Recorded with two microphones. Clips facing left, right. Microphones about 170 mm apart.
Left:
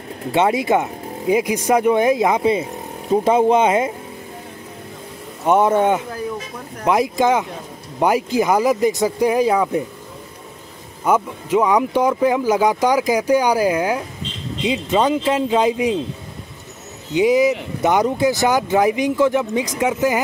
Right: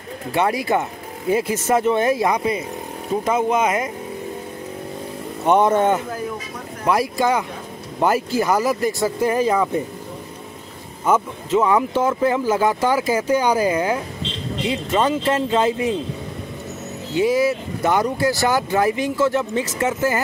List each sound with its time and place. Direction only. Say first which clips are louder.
0.3 s speech: left 3 dB; 20° left (ahead or behind)
5.5 s speech: left 1 dB; 10° left (ahead or behind)
11.1 s speech: left 1 dB; 10° left (ahead or behind)
17.1 s speech: left 3 dB; 15° left (ahead or behind)